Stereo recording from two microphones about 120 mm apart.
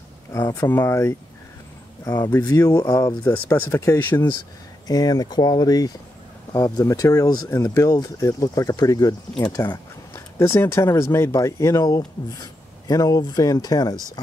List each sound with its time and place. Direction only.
0.3 s speech: 25° left (ahead or behind)
4.8 s speech: 35° left (ahead or behind)
10.1 s speech: 20° left (ahead or behind)